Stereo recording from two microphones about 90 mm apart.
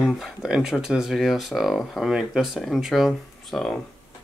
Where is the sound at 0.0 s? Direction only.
10° right (ahead or behind).